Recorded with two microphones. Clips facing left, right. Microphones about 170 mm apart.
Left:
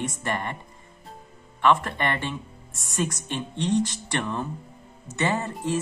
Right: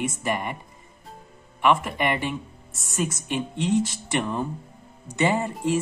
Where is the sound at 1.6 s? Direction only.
10° right (ahead or behind).